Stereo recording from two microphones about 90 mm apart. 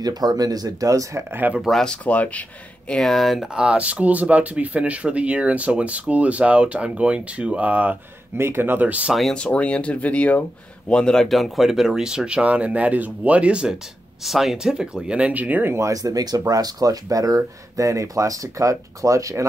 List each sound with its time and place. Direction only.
0.0 s speech: 45° right (ahead or behind)
1.3 s speech: 20° right (ahead or behind)
1.6 s speech: 5° left (ahead or behind)
2.9 s speech: 5° left (ahead or behind); by 9.1 s 15° right (ahead or behind)
9.1 s speech: centre (ahead or behind)
9.4 s speech: 15° left (ahead or behind); by 15.9 s 25° right (ahead or behind)
15.9 s speech: 40° right (ahead or behind)